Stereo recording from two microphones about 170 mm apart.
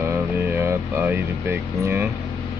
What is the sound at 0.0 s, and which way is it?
Music, 10° right (ahead or behind).